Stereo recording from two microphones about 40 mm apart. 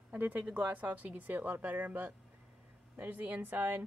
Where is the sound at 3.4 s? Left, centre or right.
Right.